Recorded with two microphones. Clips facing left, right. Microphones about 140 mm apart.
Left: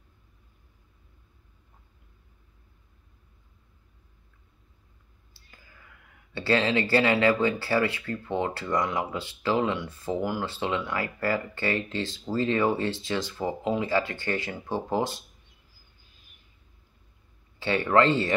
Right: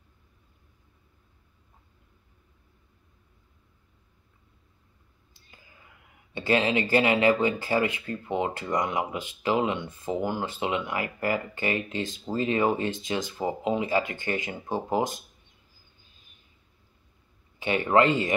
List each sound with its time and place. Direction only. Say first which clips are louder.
5.3 s speech: even; 20° right (ahead or behind)
17.6 s speech: even; 15° right (ahead or behind)